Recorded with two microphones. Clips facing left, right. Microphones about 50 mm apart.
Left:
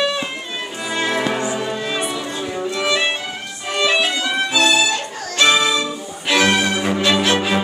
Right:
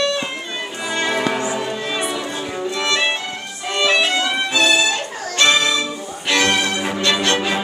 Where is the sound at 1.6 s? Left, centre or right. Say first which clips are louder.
Even; centre.